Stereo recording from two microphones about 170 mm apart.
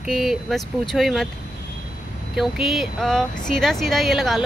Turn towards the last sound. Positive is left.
turn(degrees=0)  # may be behind; listen again after turning